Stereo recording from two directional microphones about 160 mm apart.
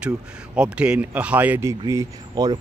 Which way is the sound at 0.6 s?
5° right (ahead or behind).